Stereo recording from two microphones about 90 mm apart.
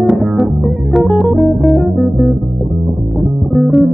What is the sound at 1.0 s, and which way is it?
Guitar, centre (ahead or behind).